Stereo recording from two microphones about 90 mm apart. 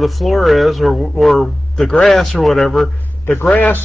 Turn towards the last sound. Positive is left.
turn(degrees=20)  # may be behind; listen again after turning